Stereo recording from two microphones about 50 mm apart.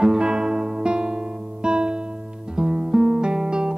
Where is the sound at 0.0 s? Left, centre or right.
Centre.